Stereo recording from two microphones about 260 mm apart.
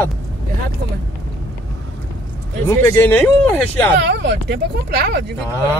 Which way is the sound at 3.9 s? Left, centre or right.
Right.